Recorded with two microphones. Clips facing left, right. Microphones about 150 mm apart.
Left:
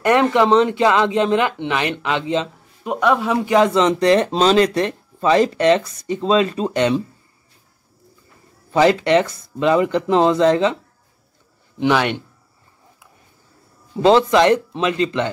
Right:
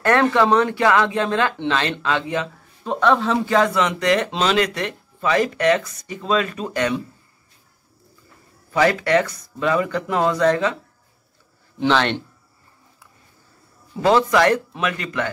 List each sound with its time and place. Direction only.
0.0 s speech: 15° left (ahead or behind)
3.8 s speech: 30° left (ahead or behind)
8.7 s speech: 20° left (ahead or behind)
11.8 s speech: 10° left (ahead or behind)
13.9 s speech: 20° left (ahead or behind)